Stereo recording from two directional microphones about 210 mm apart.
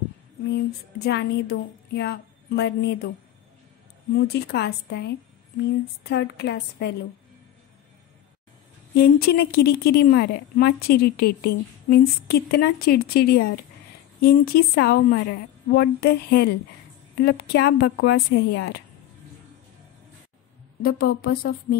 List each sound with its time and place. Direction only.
1.0 s a woman's voice: 55° left (ahead or behind)
4.1 s a woman's voice: 50° left (ahead or behind)
8.9 s a woman's voice: 45° left (ahead or behind)
20.8 s a woman's voice: 45° left (ahead or behind)